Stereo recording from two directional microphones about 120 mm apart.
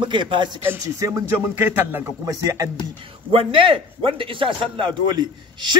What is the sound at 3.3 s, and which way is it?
A man's voice, 50° right (ahead or behind).